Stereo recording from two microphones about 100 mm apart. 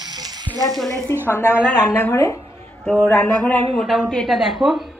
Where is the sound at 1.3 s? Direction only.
20° left (ahead or behind).